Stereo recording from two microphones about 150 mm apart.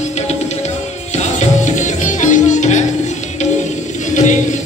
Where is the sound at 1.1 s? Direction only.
55° left (ahead or behind).